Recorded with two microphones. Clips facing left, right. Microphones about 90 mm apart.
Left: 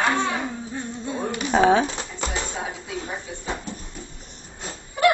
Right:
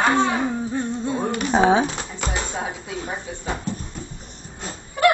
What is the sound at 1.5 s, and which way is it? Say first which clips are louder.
Speech: even; 20° right (ahead or behind).